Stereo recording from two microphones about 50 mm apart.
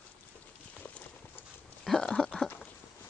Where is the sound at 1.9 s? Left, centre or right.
Centre.